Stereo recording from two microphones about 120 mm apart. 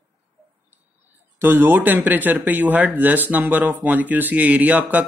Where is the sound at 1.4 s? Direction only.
15° right (ahead or behind).